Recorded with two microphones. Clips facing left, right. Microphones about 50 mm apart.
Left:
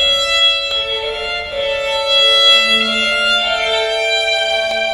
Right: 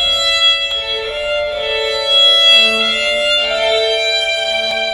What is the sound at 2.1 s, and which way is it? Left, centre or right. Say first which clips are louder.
Music: right 1 dB; left.